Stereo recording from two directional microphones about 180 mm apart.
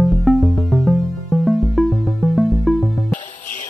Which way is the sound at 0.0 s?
Centre (ahead or behind).